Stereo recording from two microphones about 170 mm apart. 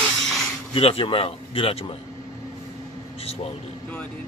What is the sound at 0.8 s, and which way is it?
A man's voice, 35° left (ahead or behind).